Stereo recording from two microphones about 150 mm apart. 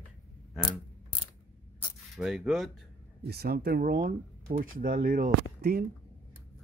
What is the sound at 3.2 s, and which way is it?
Speech, 90° right.